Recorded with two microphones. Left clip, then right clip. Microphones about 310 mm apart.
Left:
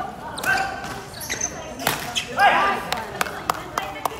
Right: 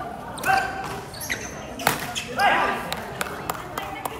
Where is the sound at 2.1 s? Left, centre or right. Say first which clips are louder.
Left 5 dB; centre.